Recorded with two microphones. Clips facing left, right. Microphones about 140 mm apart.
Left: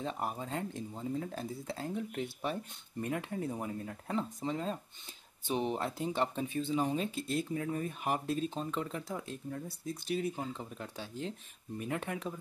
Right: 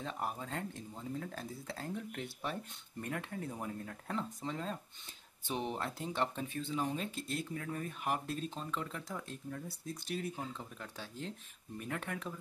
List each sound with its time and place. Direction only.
0.0 s speech: 20° left (ahead or behind)